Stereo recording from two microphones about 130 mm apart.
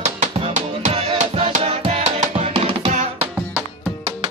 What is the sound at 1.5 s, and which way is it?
Music, 50° right (ahead or behind).